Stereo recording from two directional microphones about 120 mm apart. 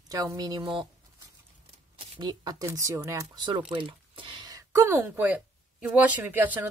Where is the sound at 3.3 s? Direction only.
40° right (ahead or behind).